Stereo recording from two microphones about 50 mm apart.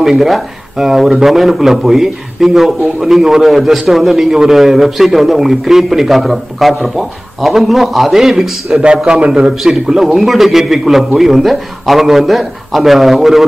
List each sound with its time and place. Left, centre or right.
0.0 s a man's voice: centre